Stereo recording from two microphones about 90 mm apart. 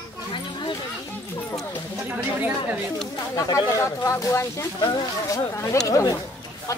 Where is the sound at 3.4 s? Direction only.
40° left (ahead or behind).